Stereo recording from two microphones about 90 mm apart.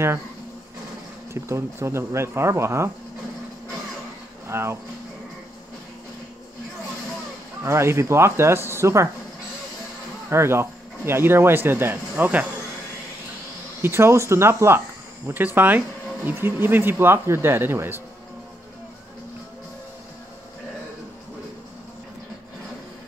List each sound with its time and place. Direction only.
1.3 s speech: 30° right (ahead or behind)
4.5 s speech: 30° right (ahead or behind)
7.6 s speech: 30° right (ahead or behind)
10.3 s speech: 30° right (ahead or behind)
13.8 s speech: 30° right (ahead or behind)